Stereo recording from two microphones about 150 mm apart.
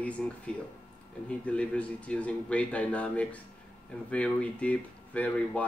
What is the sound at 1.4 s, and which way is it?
Speech, 10° left (ahead or behind).